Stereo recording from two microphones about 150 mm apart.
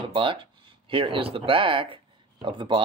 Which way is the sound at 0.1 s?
35° right (ahead or behind).